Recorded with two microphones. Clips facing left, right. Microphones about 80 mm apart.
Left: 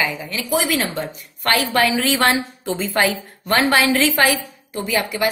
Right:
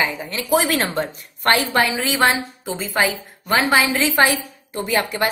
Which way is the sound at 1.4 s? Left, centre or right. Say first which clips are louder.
Even; right.